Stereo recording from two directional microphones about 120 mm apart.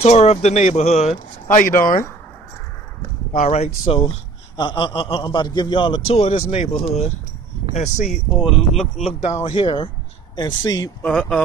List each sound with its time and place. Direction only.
0.0 s speech: 65° left (ahead or behind)
3.3 s speech: 65° left (ahead or behind)
4.6 s a man's voice: 40° left (ahead or behind); by 7.1 s 60° left (ahead or behind)
7.7 s speech: 80° left
8.1 s speech: centre (ahead or behind)
9.4 s a man's voice: 45° left (ahead or behind)
11.0 s speech: 10° left (ahead or behind)